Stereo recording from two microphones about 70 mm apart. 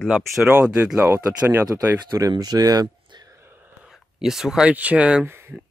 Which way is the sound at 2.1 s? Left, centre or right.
Right.